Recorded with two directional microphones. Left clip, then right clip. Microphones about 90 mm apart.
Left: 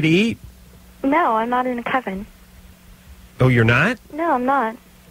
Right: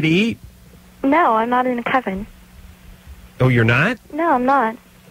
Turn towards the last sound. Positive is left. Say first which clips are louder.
# right 3 dB
turn(degrees=-30)  # may be behind; listen again after turning